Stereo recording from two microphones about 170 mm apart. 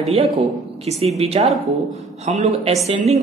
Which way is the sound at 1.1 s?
40° right (ahead or behind).